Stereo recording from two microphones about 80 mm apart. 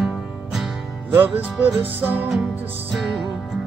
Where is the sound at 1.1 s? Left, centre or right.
Right.